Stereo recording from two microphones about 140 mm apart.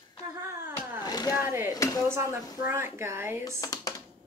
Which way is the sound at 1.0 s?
30° left (ahead or behind).